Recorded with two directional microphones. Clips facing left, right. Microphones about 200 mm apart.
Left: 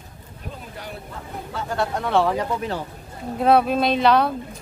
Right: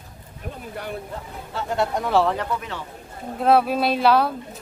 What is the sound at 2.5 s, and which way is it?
Speech, 35° left (ahead or behind).